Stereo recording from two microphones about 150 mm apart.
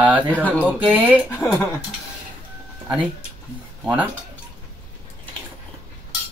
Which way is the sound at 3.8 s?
10° right (ahead or behind).